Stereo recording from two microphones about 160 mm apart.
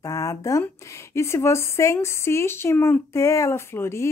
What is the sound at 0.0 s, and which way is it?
A woman's voice, 20° left (ahead or behind).